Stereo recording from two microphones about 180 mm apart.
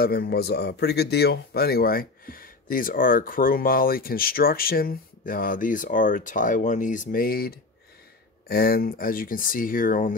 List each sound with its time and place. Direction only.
0.0 s speech: 60° left (ahead or behind)